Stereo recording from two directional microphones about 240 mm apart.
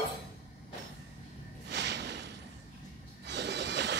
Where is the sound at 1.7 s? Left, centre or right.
Right.